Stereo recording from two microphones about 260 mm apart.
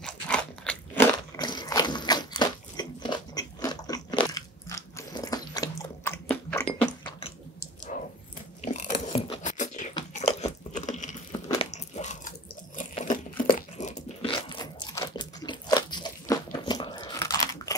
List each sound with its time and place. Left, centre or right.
0.0 s crunch: centre
7.9 s dog: left
8.7 s a sound: left
9.9 s biting: left